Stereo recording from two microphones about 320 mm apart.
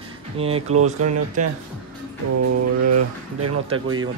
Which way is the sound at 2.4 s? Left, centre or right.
Right.